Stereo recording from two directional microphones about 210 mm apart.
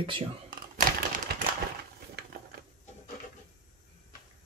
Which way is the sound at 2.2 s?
50° right (ahead or behind).